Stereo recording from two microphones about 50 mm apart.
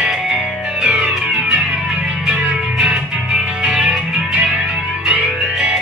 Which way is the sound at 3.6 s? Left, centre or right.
Centre.